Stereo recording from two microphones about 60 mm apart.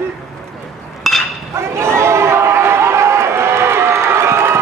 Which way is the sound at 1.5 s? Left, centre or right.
Right.